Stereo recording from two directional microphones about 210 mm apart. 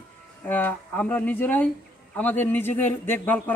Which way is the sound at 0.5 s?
10° left (ahead or behind).